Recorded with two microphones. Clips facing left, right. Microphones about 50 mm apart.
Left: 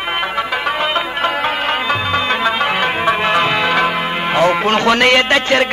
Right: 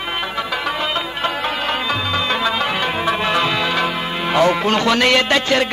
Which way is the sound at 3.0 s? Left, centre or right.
Left.